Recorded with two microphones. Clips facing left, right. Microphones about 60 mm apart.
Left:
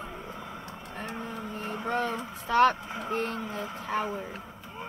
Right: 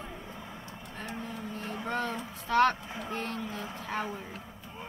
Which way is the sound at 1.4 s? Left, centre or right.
Centre.